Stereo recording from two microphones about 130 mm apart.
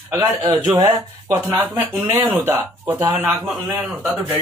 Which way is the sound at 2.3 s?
15° right (ahead or behind).